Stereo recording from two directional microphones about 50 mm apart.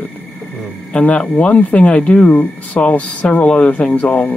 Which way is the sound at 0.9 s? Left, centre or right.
Left.